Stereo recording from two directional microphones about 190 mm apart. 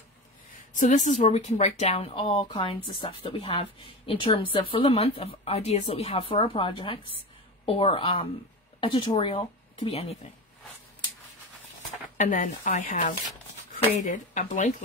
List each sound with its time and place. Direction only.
0.7 s speech: 40° left (ahead or behind)
12.2 s speech: 45° left (ahead or behind)